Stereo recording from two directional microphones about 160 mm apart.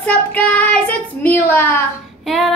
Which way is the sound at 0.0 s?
10° left (ahead or behind).